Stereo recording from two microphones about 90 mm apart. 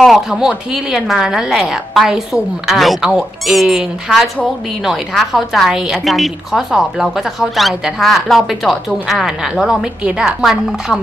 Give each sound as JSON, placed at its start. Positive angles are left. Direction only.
{"t": 0.0, "sound": "a woman's voice", "side_deg": 0}